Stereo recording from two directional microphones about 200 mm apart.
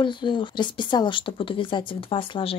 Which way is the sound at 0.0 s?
25° left (ahead or behind).